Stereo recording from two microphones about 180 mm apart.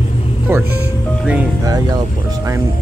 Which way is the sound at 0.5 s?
15° right (ahead or behind).